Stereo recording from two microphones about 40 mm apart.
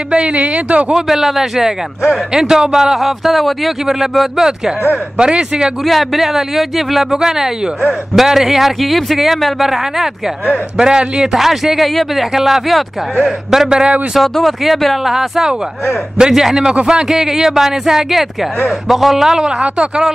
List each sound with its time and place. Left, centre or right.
0.1 s a man's voice: right
0.9 s speech: centre
4.4 s speech: centre
5.9 s a man's voice: centre
10.8 s a man's voice: centre
11.3 s a man's voice: centre
14.2 s a man's voice: centre